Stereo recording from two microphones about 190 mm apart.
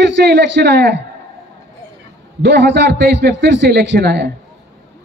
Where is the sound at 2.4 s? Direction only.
65° right (ahead or behind).